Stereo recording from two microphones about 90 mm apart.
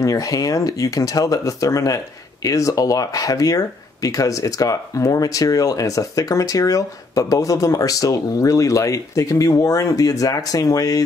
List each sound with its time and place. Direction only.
0.0 s speech: 40° left (ahead or behind)